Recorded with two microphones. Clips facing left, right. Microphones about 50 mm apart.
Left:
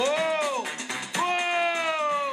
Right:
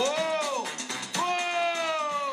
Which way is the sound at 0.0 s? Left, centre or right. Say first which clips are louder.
Left 2 dB; left.